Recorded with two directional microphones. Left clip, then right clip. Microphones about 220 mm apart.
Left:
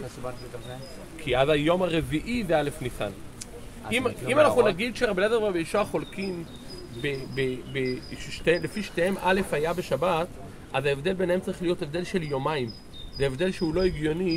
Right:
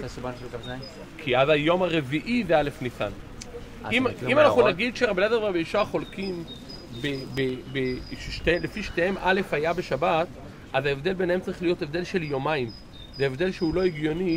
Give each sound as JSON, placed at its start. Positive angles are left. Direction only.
{"t": 1.2, "sound": "cricket", "side_deg": 10}
{"t": 3.9, "sound": "speech", "side_deg": -30}
{"t": 4.3, "sound": "cricket", "side_deg": 5}